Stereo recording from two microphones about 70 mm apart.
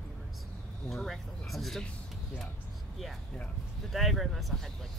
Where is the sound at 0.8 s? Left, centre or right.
Centre.